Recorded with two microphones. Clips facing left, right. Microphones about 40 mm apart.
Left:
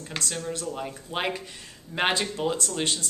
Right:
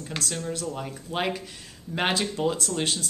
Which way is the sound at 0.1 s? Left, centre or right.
Centre.